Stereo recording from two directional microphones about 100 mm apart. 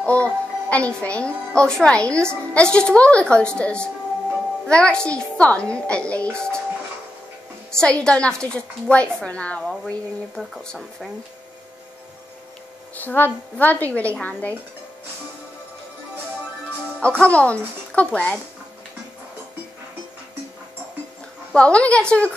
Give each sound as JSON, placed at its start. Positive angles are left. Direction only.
{"t": 0.0, "sound": "a woman's voice", "side_deg": 10}
{"t": 7.7, "sound": "a woman's voice", "side_deg": 10}
{"t": 10.3, "sound": "speech", "side_deg": 0}
{"t": 12.9, "sound": "a woman's voice", "side_deg": 20}
{"t": 17.2, "sound": "a woman's voice", "side_deg": 10}
{"t": 21.5, "sound": "a woman's voice", "side_deg": 10}